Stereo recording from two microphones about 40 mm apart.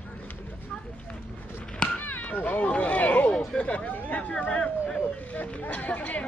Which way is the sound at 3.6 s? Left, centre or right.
Left.